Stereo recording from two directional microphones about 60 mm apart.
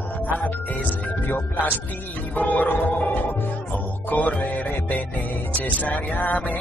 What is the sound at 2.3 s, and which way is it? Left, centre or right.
Music, left.